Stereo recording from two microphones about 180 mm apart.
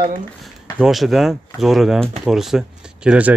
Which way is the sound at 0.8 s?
Centre (ahead or behind).